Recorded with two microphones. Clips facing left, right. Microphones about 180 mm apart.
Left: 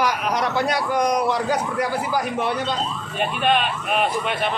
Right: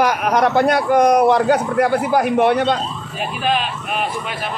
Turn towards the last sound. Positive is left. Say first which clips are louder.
# even
turn(degrees=0)  # may be behind; listen again after turning